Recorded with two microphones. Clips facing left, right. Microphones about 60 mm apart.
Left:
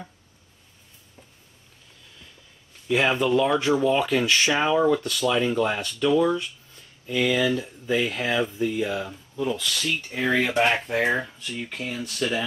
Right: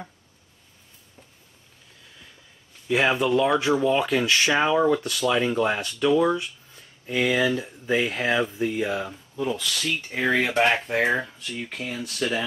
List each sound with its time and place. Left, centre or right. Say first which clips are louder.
2.9 s speech: even; centre
10.7 s speech: right 1 dB; centre